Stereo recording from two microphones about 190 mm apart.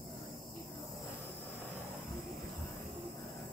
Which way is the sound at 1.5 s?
10° left (ahead or behind).